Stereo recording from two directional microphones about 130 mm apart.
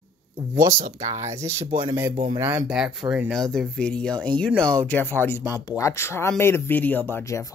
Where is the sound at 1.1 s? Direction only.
25° right (ahead or behind).